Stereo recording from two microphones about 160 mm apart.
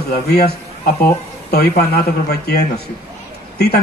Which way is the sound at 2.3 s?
90° left.